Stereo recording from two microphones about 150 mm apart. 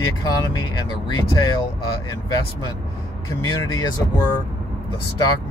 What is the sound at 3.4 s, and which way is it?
Speech, 25° left (ahead or behind).